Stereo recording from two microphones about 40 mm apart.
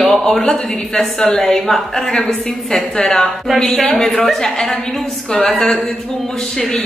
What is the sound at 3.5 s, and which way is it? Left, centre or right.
Speech, centre.